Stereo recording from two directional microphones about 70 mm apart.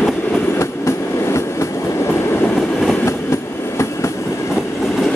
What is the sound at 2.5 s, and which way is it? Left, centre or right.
Train, centre.